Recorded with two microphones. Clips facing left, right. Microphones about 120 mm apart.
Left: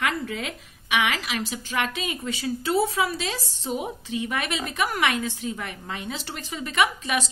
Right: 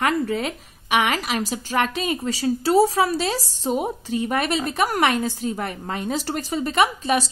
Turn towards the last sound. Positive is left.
turn(degrees=-35)  # may be behind; listen again after turning